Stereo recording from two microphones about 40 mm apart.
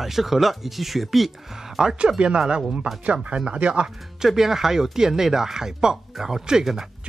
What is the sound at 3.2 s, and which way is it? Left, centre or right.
Speech, right.